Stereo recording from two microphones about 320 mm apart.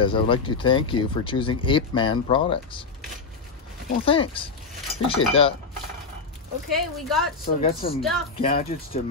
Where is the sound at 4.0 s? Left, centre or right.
Centre.